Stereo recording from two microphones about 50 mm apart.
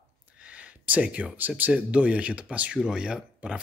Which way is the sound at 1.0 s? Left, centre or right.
Right.